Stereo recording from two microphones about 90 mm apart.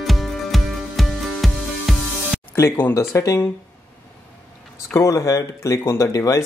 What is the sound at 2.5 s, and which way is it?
Speech, 25° left (ahead or behind).